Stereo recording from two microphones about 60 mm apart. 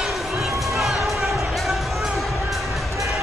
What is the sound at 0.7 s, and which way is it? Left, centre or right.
Music, centre.